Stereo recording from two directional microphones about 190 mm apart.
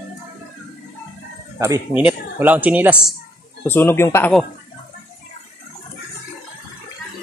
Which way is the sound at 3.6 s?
10° left (ahead or behind).